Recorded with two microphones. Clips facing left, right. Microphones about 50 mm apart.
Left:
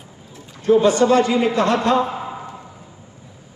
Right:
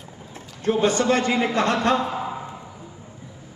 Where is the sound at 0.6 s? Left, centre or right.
Right.